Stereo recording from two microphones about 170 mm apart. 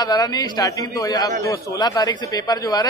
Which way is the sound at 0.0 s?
20° left (ahead or behind).